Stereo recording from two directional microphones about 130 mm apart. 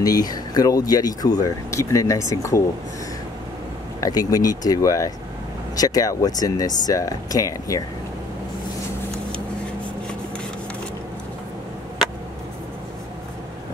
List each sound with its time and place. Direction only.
0.0 s speech: 30° left (ahead or behind)
4.0 s speech: 30° left (ahead or behind)